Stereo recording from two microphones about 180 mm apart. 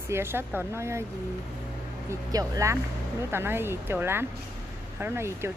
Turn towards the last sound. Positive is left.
turn(degrees=-15)  # may be behind; listen again after turning